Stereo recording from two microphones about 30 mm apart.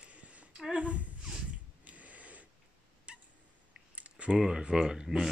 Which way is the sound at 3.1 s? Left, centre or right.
Right.